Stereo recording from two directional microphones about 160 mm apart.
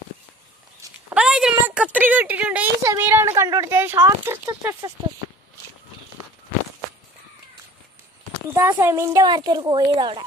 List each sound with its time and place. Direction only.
1.1 s a sound: 5° right (ahead or behind)
1.7 s speech: 10° right (ahead or behind)
4.0 s a woman's voice: 25° right (ahead or behind)
8.5 s a woman's voice: 15° right (ahead or behind); by 10.2 s 30° right (ahead or behind)